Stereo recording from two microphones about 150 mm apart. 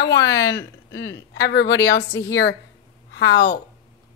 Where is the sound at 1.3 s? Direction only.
90° left.